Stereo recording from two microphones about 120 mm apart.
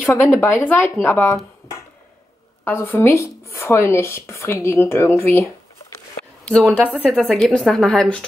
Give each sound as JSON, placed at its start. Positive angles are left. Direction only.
{"t": 0.0, "sound": "speech", "side_deg": 20}
{"t": 2.6, "sound": "speech", "side_deg": 15}
{"t": 6.4, "sound": "a woman's voice", "side_deg": 10}